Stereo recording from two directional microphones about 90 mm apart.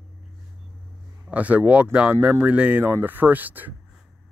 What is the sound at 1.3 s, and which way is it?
Speech, 15° right (ahead or behind).